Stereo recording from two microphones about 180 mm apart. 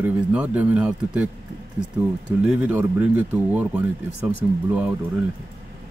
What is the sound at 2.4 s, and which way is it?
Speech, 5° right (ahead or behind).